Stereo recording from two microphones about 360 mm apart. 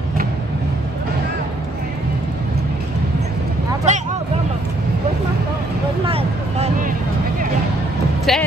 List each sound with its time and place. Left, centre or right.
3.9 s vehicle: centre
6.0 s vehicle: centre
8.3 s music: centre